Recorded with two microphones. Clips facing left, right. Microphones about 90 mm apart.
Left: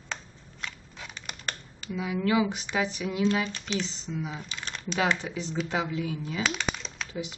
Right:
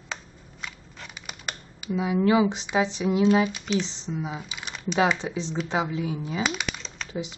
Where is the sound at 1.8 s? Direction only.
30° right (ahead or behind).